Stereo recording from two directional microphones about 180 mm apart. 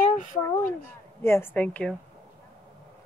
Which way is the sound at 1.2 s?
15° left (ahead or behind).